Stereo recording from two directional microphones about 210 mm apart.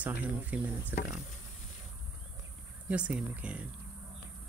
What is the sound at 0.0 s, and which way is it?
Speech, 5° right (ahead or behind).